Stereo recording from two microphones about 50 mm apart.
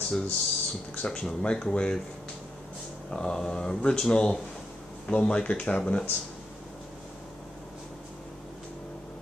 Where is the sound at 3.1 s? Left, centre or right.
Centre.